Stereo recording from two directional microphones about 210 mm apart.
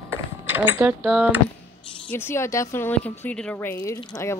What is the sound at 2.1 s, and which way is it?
A woman's voice, 10° left (ahead or behind).